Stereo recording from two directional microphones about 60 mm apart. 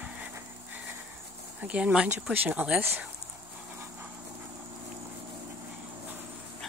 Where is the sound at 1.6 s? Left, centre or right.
Centre.